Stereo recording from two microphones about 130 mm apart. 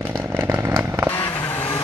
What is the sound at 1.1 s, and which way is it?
Vehicle, 15° left (ahead or behind).